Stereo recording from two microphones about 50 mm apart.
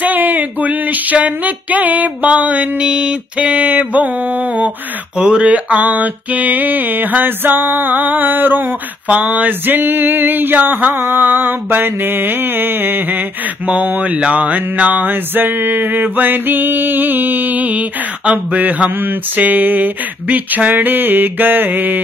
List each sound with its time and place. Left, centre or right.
0.0 s music: right
2.8 s mantra: centre
5.1 s speech: centre
5.4 s music: right
9.1 s music: right
11.0 s mantra: right
13.7 s music: right